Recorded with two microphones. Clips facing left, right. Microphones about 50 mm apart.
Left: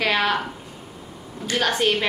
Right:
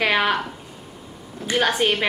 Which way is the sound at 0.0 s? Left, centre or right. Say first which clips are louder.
Right 1 dB; centre.